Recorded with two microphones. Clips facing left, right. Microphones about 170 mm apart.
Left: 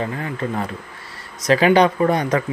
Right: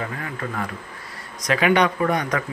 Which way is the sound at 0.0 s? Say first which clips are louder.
Left 5 dB; 25° left (ahead or behind).